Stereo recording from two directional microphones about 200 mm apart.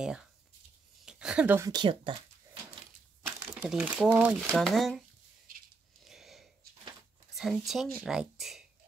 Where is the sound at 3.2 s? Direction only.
5° right (ahead or behind).